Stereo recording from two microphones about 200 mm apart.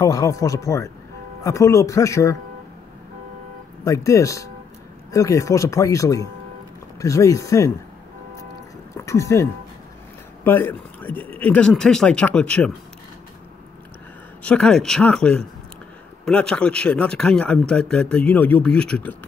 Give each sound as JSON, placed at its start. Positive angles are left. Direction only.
{"t": 0.0, "sound": "speech", "side_deg": 15}
{"t": 3.8, "sound": "speech", "side_deg": 15}
{"t": 8.9, "sound": "speech", "side_deg": 15}
{"t": 14.4, "sound": "speech", "side_deg": 5}